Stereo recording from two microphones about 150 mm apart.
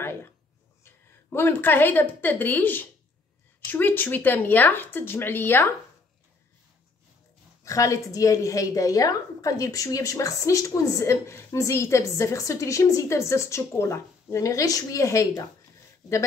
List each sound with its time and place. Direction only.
0.0 s a sound: 15° left (ahead or behind)
1.3 s speech: 15° left (ahead or behind)
7.6 s a woman's voice: 20° left (ahead or behind)